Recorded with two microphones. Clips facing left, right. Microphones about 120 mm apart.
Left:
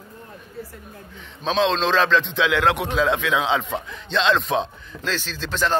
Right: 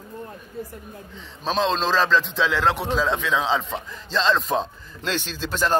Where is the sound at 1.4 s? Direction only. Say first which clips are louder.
Left 2 dB; 5° right (ahead or behind).